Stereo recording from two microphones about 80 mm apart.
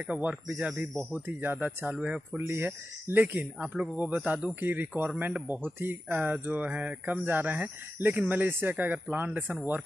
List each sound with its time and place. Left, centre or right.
0.0 s speech: centre
1.2 s speech: right
1.9 s speech: centre
2.3 s speech: right